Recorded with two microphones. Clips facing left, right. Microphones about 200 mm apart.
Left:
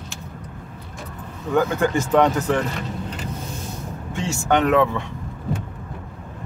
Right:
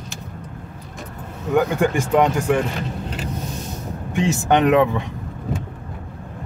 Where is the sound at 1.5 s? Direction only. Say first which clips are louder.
Right 1 dB; 15° right (ahead or behind).